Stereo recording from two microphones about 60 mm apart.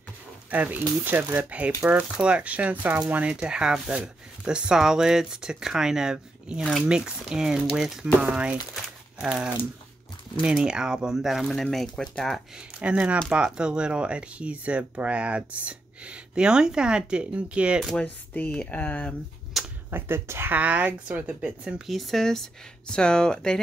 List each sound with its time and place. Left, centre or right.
0.5 s speech: right
1.8 s speech: centre
8.2 s speech: centre
12.5 s speech: centre
18.0 s speech: left
19.6 s a sound: centre
19.9 s speech: right
20.5 s speech: right
21.8 s speech: centre